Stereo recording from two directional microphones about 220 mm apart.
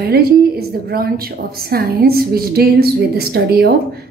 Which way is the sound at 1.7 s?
45° right (ahead or behind).